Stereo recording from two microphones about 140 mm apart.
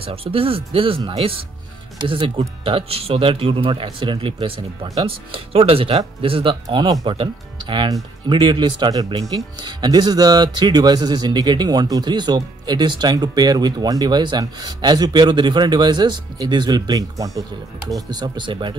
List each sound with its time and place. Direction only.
0.0 s speech: 40° right (ahead or behind)